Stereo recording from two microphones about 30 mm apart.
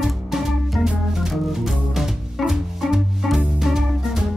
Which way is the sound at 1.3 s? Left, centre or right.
Centre.